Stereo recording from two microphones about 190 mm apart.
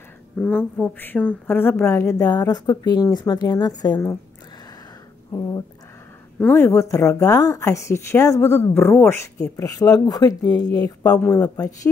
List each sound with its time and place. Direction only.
0.4 s a woman's voice: 5° left (ahead or behind)
6.4 s a woman's voice: 10° left (ahead or behind)
11.4 s speech: 20° left (ahead or behind)